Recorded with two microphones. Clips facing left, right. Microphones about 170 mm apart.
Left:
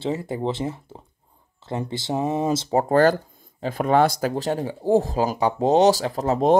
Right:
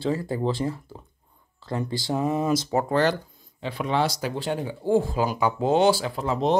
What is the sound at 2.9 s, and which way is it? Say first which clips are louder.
Speech: left 7 dB; 45° left (ahead or behind).